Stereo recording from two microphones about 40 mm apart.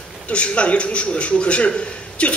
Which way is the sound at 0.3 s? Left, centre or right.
Left.